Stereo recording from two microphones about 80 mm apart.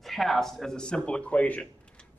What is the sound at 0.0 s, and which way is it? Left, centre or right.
Speech, centre.